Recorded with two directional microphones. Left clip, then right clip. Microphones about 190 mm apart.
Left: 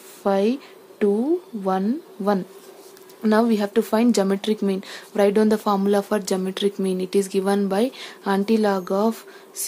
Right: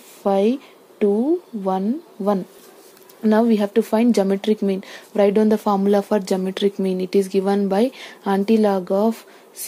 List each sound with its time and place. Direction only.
0.2 s speech: 10° right (ahead or behind)